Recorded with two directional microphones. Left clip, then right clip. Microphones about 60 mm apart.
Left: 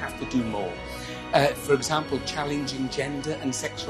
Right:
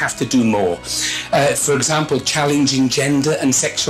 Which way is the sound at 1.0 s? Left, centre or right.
Left.